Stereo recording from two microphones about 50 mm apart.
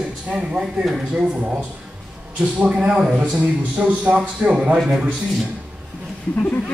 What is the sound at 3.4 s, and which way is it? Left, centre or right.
Speech, right.